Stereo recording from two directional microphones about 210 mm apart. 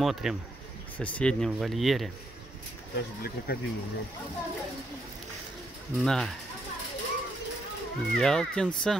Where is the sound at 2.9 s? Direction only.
50° left (ahead or behind).